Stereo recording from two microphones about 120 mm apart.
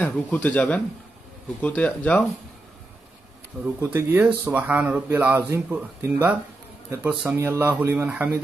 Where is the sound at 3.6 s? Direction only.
20° right (ahead or behind).